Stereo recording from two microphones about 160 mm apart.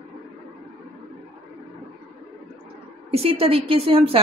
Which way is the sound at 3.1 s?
40° right (ahead or behind).